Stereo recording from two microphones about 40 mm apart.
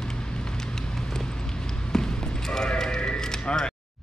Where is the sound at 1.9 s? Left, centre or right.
Centre.